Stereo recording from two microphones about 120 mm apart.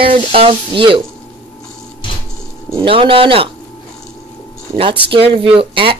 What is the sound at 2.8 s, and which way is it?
Speech, 45° right (ahead or behind).